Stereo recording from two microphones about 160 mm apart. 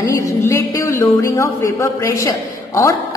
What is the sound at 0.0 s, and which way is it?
A woman's voice, 20° left (ahead or behind).